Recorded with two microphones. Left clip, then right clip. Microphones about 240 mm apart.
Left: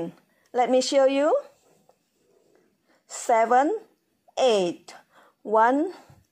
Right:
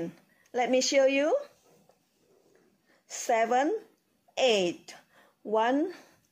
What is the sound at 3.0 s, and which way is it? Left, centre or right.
A woman's voice, centre.